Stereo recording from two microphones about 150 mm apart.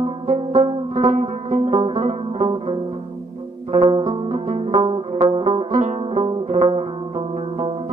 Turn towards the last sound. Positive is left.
turn(degrees=-45)  # may be behind; listen again after turning